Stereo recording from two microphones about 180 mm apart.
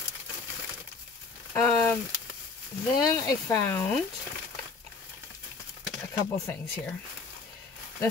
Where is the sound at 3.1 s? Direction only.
10° left (ahead or behind).